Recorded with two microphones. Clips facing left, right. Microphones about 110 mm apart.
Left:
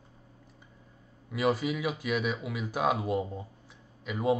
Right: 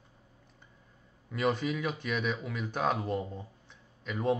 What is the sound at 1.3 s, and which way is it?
Speech, 5° left (ahead or behind).